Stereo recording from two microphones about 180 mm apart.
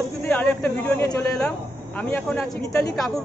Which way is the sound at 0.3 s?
10° left (ahead or behind).